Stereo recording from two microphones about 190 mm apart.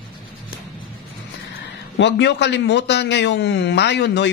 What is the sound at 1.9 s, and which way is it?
A man's voice, 65° left (ahead or behind).